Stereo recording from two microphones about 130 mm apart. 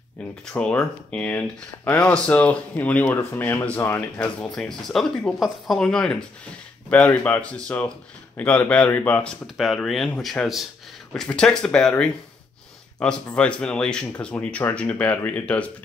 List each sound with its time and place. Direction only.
0.5 s speech: 5° left (ahead or behind)
4.5 s speech: 5° left (ahead or behind)